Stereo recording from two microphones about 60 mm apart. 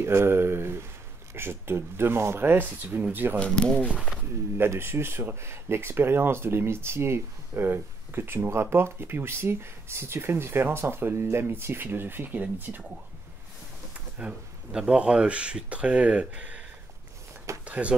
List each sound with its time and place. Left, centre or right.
0.0 s speech: right
3.3 s speech: centre
3.8 s speech: centre
4.6 s speech: right
13.9 s speech: right
17.6 s speech: right